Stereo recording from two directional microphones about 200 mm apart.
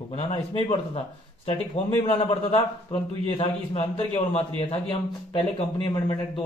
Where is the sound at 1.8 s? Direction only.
30° left (ahead or behind).